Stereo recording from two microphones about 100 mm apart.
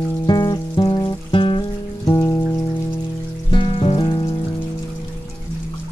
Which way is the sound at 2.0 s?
35° left (ahead or behind).